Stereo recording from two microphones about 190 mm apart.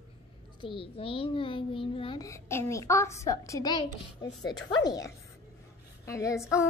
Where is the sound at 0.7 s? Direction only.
30° left (ahead or behind).